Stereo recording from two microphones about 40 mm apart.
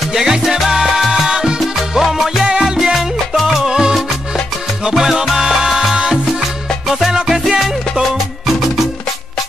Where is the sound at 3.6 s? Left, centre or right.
Centre.